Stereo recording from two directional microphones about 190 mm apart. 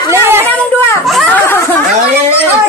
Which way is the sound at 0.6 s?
10° left (ahead or behind).